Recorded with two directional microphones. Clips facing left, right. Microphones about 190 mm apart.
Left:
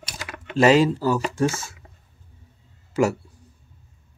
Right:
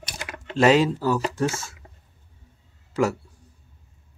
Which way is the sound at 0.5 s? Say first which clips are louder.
Left 2 dB; centre (ahead or behind).